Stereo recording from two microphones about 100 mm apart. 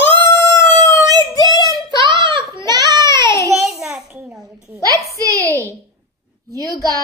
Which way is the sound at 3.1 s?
50° right (ahead or behind).